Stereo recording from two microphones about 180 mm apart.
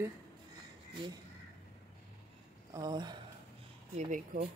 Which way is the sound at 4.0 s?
40° right (ahead or behind).